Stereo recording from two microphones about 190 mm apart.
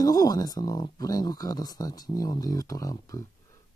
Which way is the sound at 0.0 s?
20° left (ahead or behind).